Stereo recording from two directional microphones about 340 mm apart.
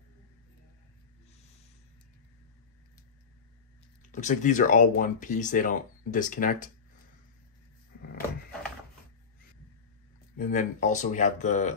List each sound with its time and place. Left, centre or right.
4.0 s speech: left
10.3 s speech: left